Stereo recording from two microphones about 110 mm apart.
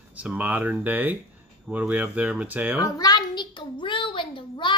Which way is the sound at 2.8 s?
35° left (ahead or behind).